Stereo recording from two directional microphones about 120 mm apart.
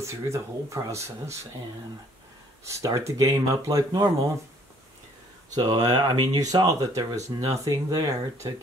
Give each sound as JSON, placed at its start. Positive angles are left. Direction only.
{"t": 0.0, "sound": "speech", "side_deg": -25}
{"t": 2.6, "sound": "speech", "side_deg": -25}
{"t": 5.6, "sound": "speech", "side_deg": -35}